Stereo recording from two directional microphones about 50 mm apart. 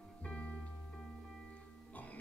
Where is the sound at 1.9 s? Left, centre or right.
Left.